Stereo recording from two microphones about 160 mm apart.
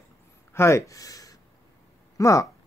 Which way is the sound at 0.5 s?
15° left (ahead or behind).